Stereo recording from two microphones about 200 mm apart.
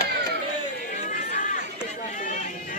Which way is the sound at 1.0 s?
40° left (ahead or behind).